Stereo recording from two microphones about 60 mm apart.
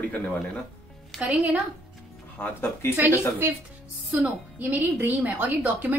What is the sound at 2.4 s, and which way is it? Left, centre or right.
Speech, left.